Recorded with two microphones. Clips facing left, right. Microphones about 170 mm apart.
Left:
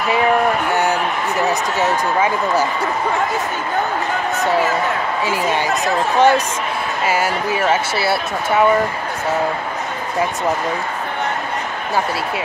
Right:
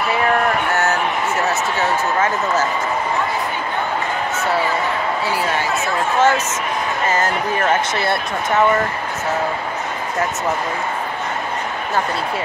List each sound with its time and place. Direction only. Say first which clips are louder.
1.5 s speech: left 1 dB; 15° left (ahead or behind)
6.1 s speech: left 3 dB; 15° left (ahead or behind)